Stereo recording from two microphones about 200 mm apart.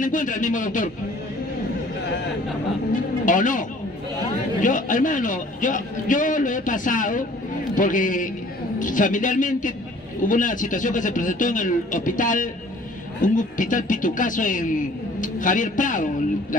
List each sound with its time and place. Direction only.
0.0 s a man's voice: 40° left (ahead or behind)
2.9 s a man's voice: 40° left (ahead or behind)